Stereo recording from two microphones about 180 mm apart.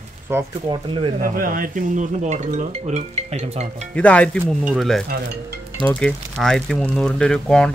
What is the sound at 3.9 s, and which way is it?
Speech, 5° left (ahead or behind).